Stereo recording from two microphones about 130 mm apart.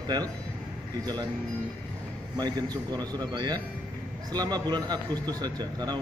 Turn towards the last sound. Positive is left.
turn(degrees=-30)  # may be behind; listen again after turning